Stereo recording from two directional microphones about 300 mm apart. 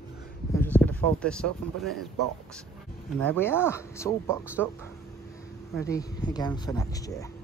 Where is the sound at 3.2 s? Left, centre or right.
Centre.